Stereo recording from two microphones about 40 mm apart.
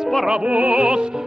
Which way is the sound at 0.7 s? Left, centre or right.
Centre.